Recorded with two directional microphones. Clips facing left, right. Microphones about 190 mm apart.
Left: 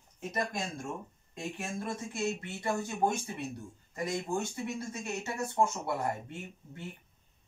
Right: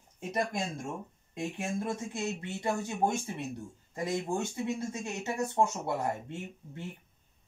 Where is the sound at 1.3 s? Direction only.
20° right (ahead or behind).